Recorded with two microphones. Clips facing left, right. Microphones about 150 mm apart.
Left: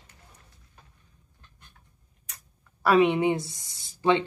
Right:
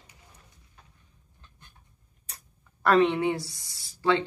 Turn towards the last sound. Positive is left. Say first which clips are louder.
# left 2 dB
turn(degrees=20)  # may be behind; listen again after turning